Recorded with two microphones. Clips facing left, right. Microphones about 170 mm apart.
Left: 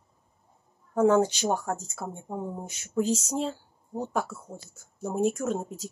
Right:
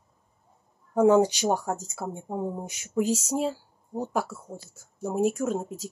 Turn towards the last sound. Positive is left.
turn(degrees=0)  # may be behind; listen again after turning